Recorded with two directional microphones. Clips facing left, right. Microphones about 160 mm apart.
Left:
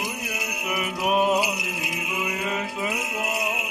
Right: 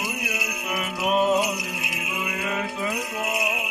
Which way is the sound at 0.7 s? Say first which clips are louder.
Even; 10° left (ahead or behind).